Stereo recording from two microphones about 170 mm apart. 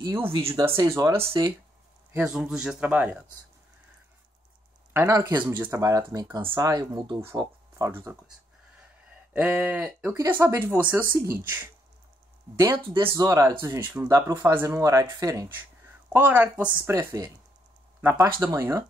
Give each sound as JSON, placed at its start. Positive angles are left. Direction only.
{"t": 0.0, "sound": "speech", "side_deg": -15}
{"t": 1.2, "sound": "speech", "side_deg": -30}
{"t": 2.1, "sound": "speech", "side_deg": -5}
{"t": 4.9, "sound": "speech", "side_deg": -20}
{"t": 9.3, "sound": "speech", "side_deg": -10}